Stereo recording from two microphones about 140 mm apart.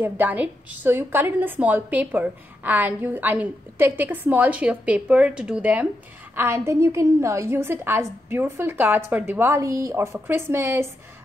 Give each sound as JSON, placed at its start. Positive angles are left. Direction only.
{"t": 0.0, "sound": "a woman's voice", "side_deg": -10}